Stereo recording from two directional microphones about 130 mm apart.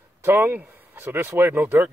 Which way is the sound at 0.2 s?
15° right (ahead or behind).